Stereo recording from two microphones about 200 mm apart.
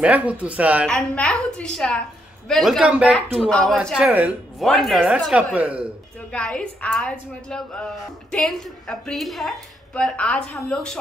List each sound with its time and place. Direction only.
0.0 s speech: 5° right (ahead or behind)
0.8 s a woman's voice: 5° left (ahead or behind)
6.3 s a woman's voice: 5° left (ahead or behind)